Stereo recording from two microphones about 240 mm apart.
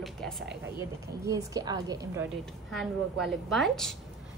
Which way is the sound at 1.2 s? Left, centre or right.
Centre.